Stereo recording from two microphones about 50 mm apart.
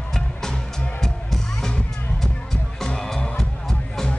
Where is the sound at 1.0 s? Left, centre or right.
Centre.